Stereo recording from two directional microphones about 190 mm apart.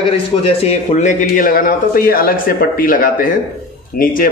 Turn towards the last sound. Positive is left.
turn(degrees=50)  # may be behind; listen again after turning